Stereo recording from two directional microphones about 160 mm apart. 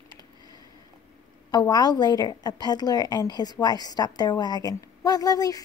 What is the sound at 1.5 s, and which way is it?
A woman's voice, 25° left (ahead or behind).